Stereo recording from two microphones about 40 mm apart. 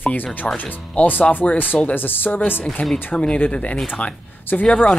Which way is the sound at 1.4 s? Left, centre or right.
Left.